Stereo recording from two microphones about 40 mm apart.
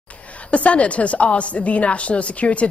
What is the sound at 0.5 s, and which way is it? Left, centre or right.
A woman's voice, left.